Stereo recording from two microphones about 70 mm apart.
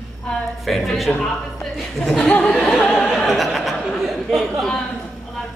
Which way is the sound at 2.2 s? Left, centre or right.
Centre.